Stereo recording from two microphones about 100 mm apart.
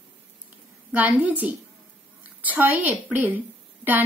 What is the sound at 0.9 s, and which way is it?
A woman's voice, 15° right (ahead or behind).